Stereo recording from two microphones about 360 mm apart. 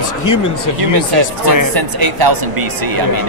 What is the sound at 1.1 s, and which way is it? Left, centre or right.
Speech, right.